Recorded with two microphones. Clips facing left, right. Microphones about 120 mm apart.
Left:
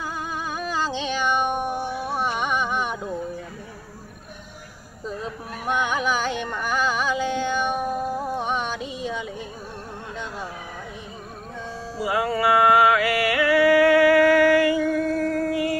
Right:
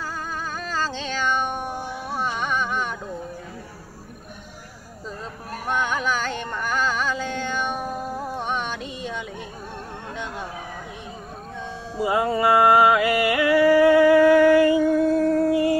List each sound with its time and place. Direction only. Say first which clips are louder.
0.6 s music: left 2 dB; 15° left (ahead or behind)
5.7 s music: left 1 dB; 10° left (ahead or behind)
12.0 s music: right 2 dB; 25° right (ahead or behind)